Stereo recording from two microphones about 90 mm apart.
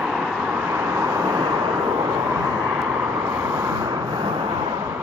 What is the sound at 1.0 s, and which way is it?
Vehicle, 35° right (ahead or behind).